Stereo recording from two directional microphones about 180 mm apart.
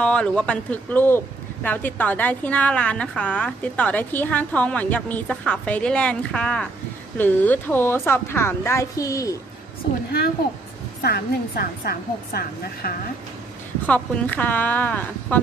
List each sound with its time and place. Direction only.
0.0 s speech: 5° left (ahead or behind)
11.0 s a woman's voice: 60° left (ahead or behind)
13.8 s speech: 10° left (ahead or behind)